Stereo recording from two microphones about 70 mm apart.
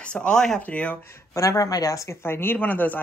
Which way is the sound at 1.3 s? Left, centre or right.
Left.